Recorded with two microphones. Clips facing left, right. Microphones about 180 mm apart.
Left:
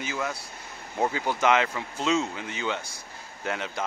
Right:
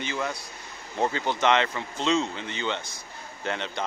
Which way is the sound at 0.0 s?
5° left (ahead or behind).